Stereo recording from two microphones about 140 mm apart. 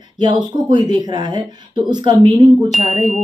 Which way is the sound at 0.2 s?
30° right (ahead or behind).